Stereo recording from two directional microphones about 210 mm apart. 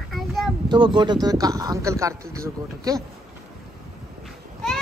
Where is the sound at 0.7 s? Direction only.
20° right (ahead or behind).